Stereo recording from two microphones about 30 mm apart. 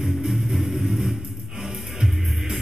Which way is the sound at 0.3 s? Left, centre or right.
Centre.